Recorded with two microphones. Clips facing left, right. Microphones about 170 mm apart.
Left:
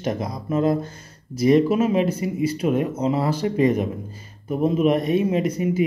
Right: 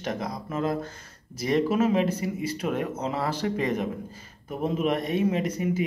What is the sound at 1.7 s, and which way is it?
Speech, 20° left (ahead or behind).